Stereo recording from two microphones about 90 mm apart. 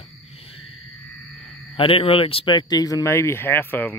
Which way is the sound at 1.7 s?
85° left.